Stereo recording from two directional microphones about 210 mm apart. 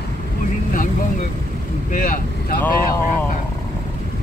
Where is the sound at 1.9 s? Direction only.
40° left (ahead or behind).